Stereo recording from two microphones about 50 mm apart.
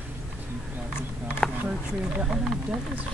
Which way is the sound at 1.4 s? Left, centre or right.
Centre.